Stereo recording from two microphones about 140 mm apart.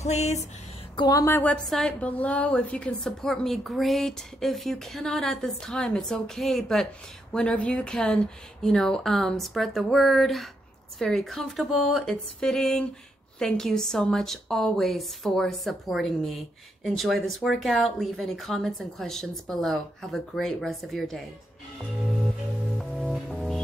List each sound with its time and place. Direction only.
0.0 s a sound: 55° left (ahead or behind)
0.9 s speech: 30° left (ahead or behind)
1.2 s a woman's voice: 15° left (ahead or behind)
22.8 s music: 5° left (ahead or behind)